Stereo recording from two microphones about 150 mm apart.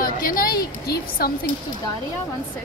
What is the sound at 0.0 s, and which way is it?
A woman's voice, 70° left (ahead or behind).